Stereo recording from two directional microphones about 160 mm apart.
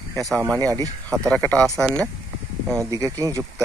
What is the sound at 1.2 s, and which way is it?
Speech, 10° left (ahead or behind).